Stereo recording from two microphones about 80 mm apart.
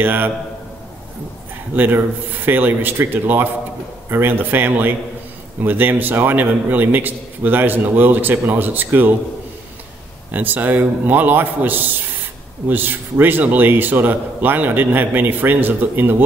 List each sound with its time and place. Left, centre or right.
0.0 s a man's voice: right
2.4 s a man's voice: right
10.3 s a man's voice: right